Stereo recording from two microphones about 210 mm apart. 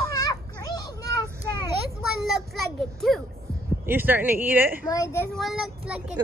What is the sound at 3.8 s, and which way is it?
Speech, 10° right (ahead or behind).